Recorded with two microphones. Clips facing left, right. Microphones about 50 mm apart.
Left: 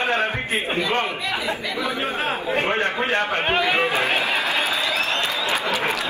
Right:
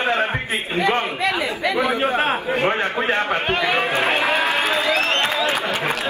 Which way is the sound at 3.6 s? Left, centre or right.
Right.